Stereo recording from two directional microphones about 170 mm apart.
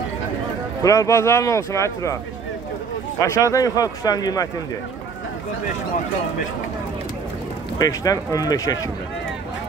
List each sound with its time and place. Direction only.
0.8 s speech: 20° left (ahead or behind)
3.2 s speech: 15° left (ahead or behind)
7.8 s speech: 20° left (ahead or behind)